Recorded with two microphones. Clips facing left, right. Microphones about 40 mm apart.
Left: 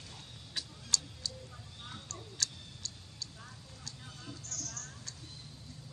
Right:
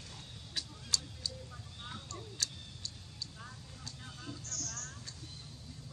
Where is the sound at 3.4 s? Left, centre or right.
Centre.